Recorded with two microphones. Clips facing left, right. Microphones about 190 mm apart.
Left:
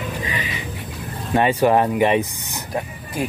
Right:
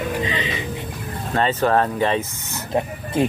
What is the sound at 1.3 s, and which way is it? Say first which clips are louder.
Speech: left 3 dB; 15° left (ahead or behind).